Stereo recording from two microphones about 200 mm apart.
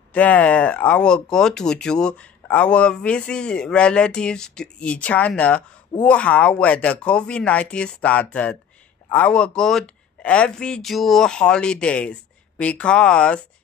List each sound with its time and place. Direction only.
0.1 s speech: 5° left (ahead or behind)